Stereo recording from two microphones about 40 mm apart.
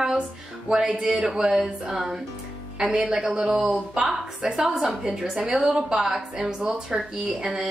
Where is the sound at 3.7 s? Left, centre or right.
Right.